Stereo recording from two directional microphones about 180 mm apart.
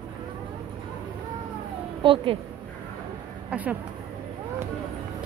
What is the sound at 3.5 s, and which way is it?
Speech, 10° right (ahead or behind).